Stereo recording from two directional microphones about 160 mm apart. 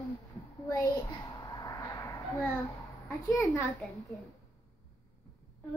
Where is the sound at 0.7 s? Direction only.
20° left (ahead or behind).